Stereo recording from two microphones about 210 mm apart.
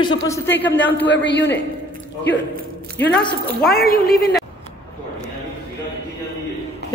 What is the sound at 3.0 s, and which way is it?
Speech, 55° left (ahead or behind).